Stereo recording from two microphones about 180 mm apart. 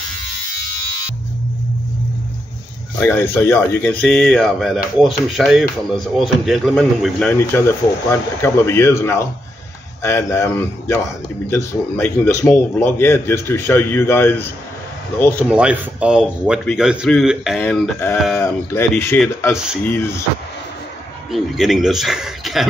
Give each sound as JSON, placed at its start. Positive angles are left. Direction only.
{"t": 3.0, "sound": "a man's voice", "side_deg": 10}
{"t": 4.1, "sound": "a man's voice", "side_deg": 0}
{"t": 15.4, "sound": "speech", "side_deg": -5}
{"t": 18.3, "sound": "a man's voice", "side_deg": 15}
{"t": 19.5, "sound": "speech", "side_deg": -5}
{"t": 19.9, "sound": "a man's voice", "side_deg": 15}
{"t": 21.3, "sound": "speech", "side_deg": 0}